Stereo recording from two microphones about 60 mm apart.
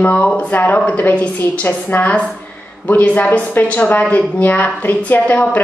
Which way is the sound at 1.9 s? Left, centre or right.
Left.